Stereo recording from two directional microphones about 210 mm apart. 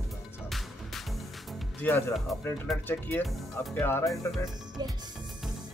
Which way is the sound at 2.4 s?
5° left (ahead or behind).